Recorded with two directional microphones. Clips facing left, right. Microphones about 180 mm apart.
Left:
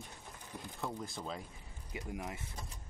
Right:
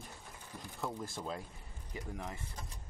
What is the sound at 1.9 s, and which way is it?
Speech, 10° left (ahead or behind).